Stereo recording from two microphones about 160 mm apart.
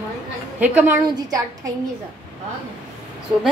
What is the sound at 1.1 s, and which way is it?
Speech, 25° right (ahead or behind).